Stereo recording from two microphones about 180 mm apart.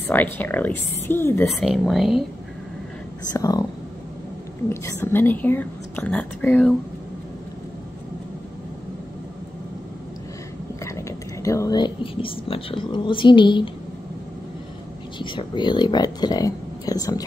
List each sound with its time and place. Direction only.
0.0 s a woman's voice: 10° left (ahead or behind)
1.5 s a woman's voice: centre (ahead or behind)
3.3 s speech: 20° left (ahead or behind)
4.6 s a woman's voice: 15° left (ahead or behind)
10.8 s speech: 15° left (ahead or behind)
15.1 s speech: 25° left (ahead or behind)